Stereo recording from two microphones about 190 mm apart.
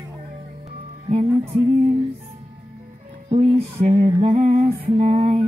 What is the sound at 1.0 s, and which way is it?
Music, 30° right (ahead or behind).